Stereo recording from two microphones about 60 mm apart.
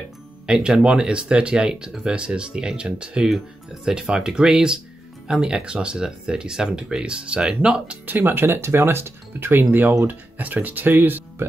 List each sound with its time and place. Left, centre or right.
0.5 s speech: centre
8.1 s speech: right